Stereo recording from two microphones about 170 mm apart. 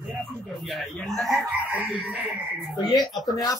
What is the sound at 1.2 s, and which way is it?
Chicken, centre (ahead or behind).